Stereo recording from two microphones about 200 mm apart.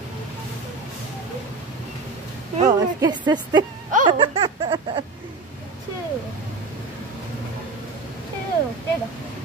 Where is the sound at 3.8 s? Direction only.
40° right (ahead or behind).